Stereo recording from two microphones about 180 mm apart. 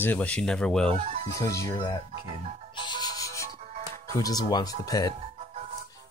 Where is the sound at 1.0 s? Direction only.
40° right (ahead or behind).